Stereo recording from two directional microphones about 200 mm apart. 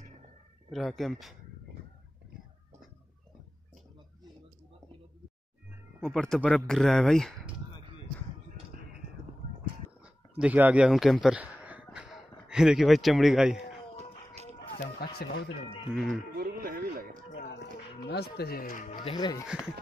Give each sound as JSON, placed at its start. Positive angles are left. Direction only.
{"t": 0.7, "sound": "speech", "side_deg": 0}
{"t": 6.0, "sound": "speech", "side_deg": 5}
{"t": 10.4, "sound": "speech", "side_deg": -5}
{"t": 15.0, "sound": "speech", "side_deg": 50}
{"t": 15.9, "sound": "speech", "side_deg": 0}
{"t": 16.3, "sound": "speech", "side_deg": -50}
{"t": 17.5, "sound": "speech", "side_deg": 60}
{"t": 18.9, "sound": "speech", "side_deg": 20}
{"t": 19.4, "sound": "speech", "side_deg": -5}